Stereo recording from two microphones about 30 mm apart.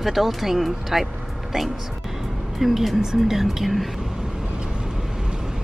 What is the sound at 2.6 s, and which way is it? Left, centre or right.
Speech, centre.